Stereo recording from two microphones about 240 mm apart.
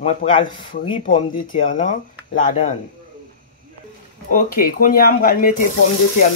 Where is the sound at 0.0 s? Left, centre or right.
Left.